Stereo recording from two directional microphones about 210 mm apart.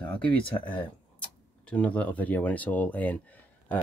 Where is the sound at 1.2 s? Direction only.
5° left (ahead or behind).